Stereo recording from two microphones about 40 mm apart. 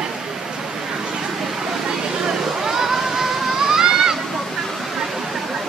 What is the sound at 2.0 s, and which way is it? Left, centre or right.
Vehicle, centre.